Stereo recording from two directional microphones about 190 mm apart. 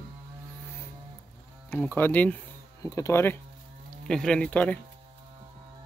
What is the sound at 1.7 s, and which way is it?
Speech, 10° left (ahead or behind).